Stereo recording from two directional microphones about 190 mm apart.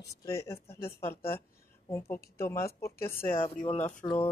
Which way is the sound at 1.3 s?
10° left (ahead or behind).